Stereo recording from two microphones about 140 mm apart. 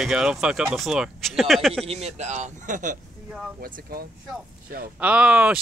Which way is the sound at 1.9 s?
50° right (ahead or behind).